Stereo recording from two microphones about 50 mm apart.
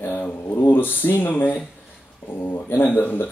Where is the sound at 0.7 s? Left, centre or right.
Left.